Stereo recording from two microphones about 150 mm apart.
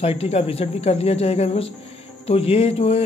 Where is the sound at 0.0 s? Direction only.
40° left (ahead or behind).